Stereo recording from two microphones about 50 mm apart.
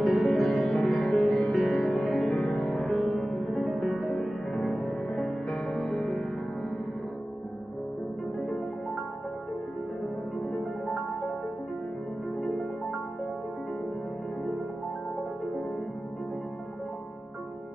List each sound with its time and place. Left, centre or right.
0.0 s music: centre
8.4 s music: centre
10.9 s music: centre
12.4 s music: centre